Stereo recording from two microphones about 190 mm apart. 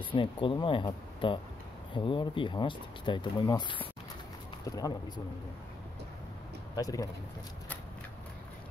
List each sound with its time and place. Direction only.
0.0 s speech: 25° left (ahead or behind)
6.7 s speech: 20° left (ahead or behind)